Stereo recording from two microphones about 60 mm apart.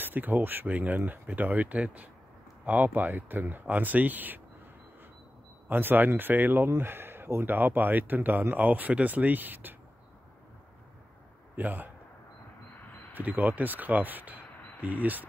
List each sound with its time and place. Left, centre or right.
0.0 s speech: right
5.7 s speech: right
11.5 s a man's voice: right
12.7 s a sound: left
13.1 s speech: right